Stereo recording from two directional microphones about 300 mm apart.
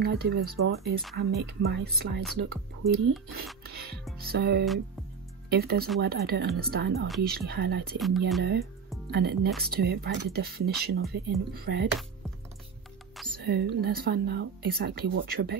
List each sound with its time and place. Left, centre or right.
0.0 s speech: right
8.0 s speech: centre
9.1 s speech: right
13.4 s speech: right